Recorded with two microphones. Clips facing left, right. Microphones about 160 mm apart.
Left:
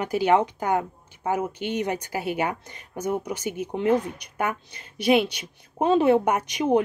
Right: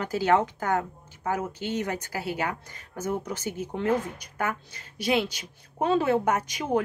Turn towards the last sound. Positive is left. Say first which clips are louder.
# left 5 dB
turn(degrees=20)  # may be behind; listen again after turning